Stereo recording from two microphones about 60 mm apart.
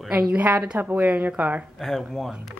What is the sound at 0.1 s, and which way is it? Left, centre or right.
Speech, centre.